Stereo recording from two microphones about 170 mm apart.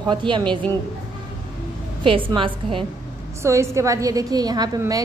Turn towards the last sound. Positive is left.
turn(degrees=-20)  # may be behind; listen again after turning